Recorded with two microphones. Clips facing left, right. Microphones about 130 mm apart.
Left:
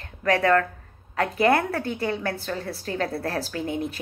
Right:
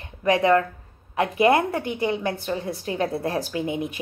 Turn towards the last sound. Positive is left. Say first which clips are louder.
# right 2 dB
turn(degrees=-15)  # may be behind; listen again after turning